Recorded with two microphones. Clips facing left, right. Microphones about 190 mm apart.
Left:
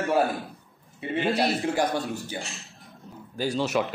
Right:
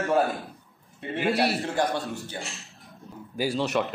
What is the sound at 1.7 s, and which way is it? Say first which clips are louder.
Speech: left 1 dB; 15° left (ahead or behind).